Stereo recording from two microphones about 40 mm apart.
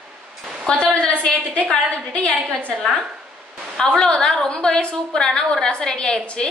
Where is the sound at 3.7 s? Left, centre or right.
Centre.